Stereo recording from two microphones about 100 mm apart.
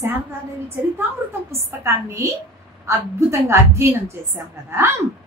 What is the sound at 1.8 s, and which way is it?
A woman's voice, 30° right (ahead or behind).